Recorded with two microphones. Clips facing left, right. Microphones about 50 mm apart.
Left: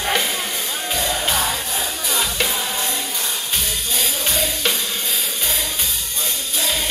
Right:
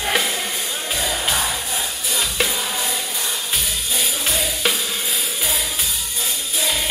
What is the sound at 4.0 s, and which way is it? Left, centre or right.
Music, centre.